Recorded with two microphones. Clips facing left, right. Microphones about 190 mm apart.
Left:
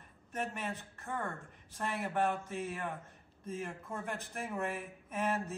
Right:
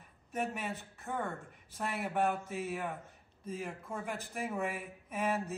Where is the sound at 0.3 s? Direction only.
5° right (ahead or behind).